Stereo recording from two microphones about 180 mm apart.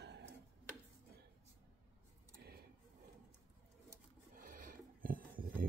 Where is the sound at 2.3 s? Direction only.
60° right (ahead or behind).